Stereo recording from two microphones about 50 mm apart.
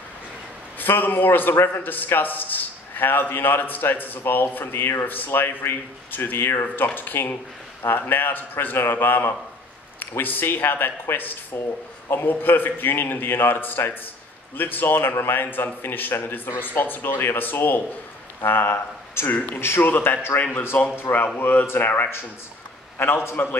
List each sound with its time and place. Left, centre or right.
0.7 s a man's voice: left
5.3 s a man's voice: left
19.3 s a man's voice: left
19.6 s a man's voice: left
20.3 s a man's voice: left
22.9 s a man's voice: left